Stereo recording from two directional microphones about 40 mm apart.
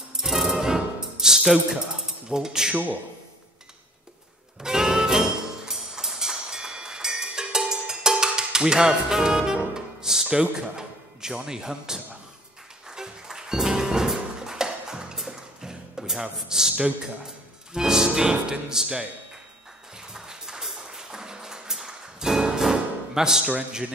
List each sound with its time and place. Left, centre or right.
0.1 s music: centre
2.2 s speech: centre
4.6 s music: centre
10.5 s a man's voice: centre
12.8 s music: centre
17.7 s speech: centre
20.0 s music: centre